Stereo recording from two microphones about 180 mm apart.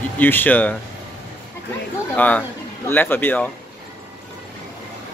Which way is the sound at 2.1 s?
10° left (ahead or behind).